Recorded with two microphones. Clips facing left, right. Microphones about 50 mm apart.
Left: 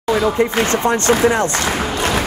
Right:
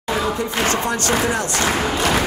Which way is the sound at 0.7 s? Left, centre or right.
Left.